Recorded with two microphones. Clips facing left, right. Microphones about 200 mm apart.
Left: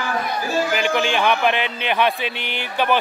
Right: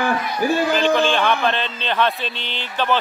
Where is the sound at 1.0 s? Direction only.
15° left (ahead or behind).